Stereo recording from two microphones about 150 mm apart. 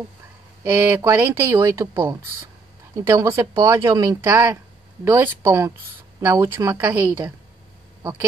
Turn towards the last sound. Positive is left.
turn(degrees=-25)  # may be behind; listen again after turning